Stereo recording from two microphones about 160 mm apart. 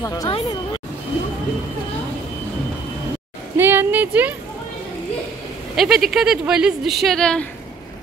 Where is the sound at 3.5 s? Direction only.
15° right (ahead or behind).